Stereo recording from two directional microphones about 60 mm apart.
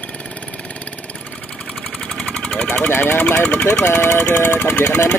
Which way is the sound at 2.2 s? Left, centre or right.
Centre.